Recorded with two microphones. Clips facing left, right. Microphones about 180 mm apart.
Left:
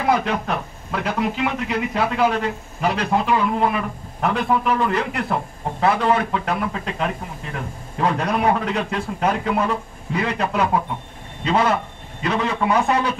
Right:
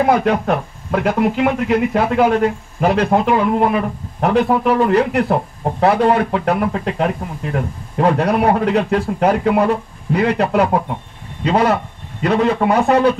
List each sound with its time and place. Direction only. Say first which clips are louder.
0.0 s a man's voice: right 6 dB; 50° right (ahead or behind)